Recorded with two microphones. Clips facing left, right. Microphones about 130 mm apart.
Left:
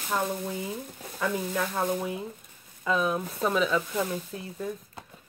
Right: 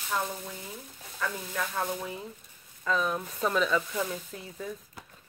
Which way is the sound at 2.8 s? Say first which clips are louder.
Left 3 dB; 5° left (ahead or behind).